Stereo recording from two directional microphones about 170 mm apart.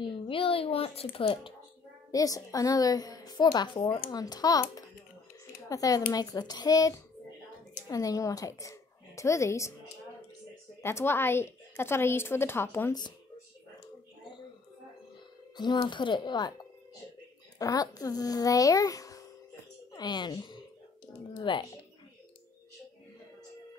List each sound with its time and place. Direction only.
0.0 s speech: 30° left (ahead or behind)
2.0 s a woman's voice: 20° left (ahead or behind)
10.8 s a woman's voice: 15° left (ahead or behind)
15.5 s a woman's voice: 25° left (ahead or behind)